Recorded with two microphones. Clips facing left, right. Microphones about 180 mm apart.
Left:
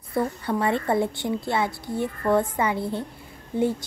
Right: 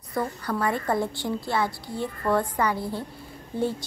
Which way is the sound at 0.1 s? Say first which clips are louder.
Left 3 dB; 25° left (ahead or behind).